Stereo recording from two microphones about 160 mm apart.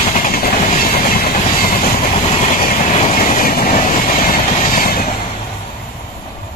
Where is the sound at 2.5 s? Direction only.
55° left (ahead or behind).